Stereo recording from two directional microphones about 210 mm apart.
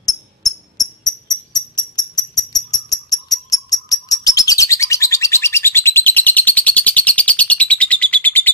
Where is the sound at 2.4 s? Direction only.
20° left (ahead or behind).